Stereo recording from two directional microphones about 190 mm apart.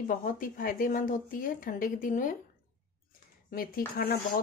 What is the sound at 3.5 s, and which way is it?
Speech, 50° left (ahead or behind).